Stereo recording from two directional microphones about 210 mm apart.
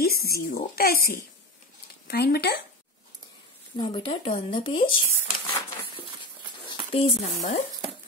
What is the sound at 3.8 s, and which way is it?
Speech, 25° left (ahead or behind).